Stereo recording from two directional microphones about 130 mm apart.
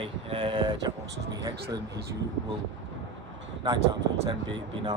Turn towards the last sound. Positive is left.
turn(degrees=-35)  # may be behind; listen again after turning